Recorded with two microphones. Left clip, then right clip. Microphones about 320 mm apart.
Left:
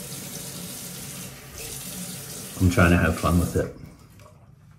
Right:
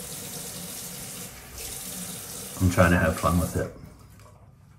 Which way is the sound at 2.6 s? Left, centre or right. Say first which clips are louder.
Left 1 dB; centre.